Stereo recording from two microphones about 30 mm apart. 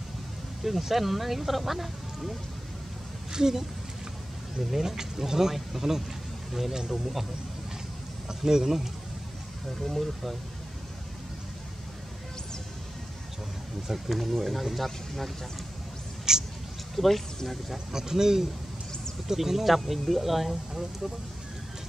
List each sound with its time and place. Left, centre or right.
0.7 s speech: centre
3.3 s speech: centre
4.6 s speech: centre
8.5 s speech: centre
9.8 s speech: centre
13.9 s speech: centre
16.3 s speech: right
16.9 s speech: centre
17.9 s speech: centre